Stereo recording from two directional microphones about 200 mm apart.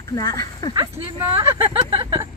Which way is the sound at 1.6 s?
25° right (ahead or behind).